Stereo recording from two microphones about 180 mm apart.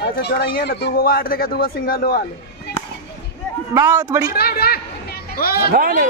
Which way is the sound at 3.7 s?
15° right (ahead or behind).